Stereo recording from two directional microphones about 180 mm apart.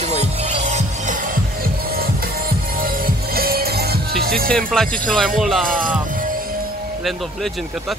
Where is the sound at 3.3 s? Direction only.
55° right (ahead or behind).